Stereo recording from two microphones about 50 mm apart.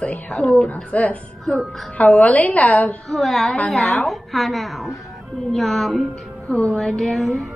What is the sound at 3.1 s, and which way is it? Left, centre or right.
A woman's voice, centre.